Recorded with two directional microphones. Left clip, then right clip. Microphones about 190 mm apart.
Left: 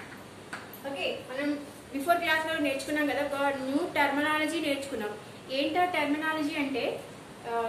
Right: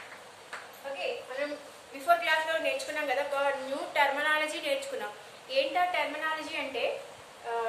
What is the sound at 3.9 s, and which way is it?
A woman's voice, 15° right (ahead or behind).